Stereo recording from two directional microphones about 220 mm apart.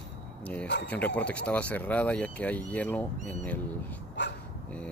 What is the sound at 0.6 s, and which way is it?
Speech, 50° left (ahead or behind).